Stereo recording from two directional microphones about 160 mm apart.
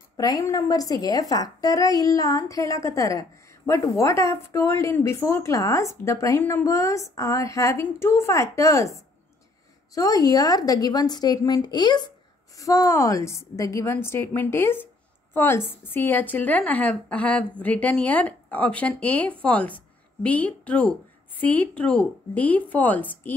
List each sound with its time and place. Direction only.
0.2 s a woman's voice: 20° left (ahead or behind)